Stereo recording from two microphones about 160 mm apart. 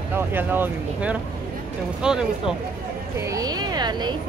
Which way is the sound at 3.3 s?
25° right (ahead or behind).